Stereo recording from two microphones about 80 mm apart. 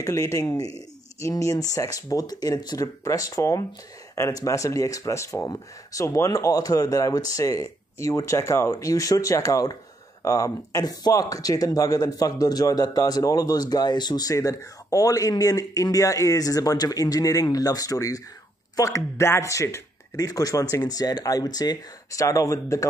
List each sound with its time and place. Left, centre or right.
0.0 s speech: left
3.0 s speech: left
22.2 s speech: left